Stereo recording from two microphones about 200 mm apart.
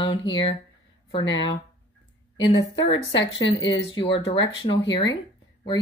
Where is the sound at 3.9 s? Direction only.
25° left (ahead or behind).